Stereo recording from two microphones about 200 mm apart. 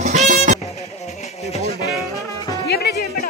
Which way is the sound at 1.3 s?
30° left (ahead or behind).